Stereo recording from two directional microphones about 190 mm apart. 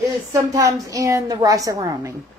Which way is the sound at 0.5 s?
15° right (ahead or behind).